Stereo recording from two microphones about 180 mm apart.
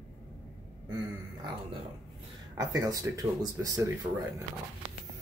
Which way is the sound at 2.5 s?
20° right (ahead or behind).